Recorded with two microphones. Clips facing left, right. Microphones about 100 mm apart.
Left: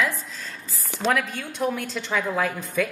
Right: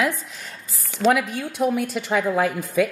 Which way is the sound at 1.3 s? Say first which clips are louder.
Right 5 dB; 10° right (ahead or behind).